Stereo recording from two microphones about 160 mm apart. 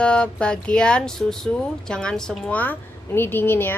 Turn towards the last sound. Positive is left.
turn(degrees=15)  # may be behind; listen again after turning